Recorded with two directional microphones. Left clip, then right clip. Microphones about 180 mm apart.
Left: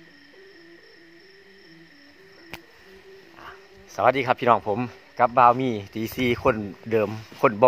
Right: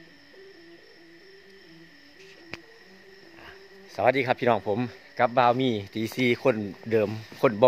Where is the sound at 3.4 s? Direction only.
10° left (ahead or behind).